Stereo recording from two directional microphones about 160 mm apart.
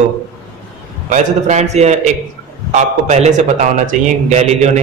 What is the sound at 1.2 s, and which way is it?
A man's voice, 45° right (ahead or behind).